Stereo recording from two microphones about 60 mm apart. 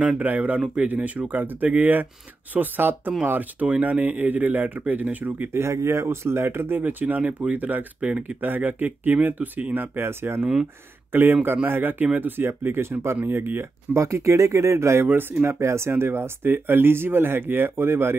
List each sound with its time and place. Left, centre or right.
0.2 s speech: right
5.5 s speech: right
6.8 s speech: right
9.9 s speech: right
10.4 s speech: centre
11.1 s speech: right
13.9 s speech: right
15.0 s speech: right
15.4 s speech: right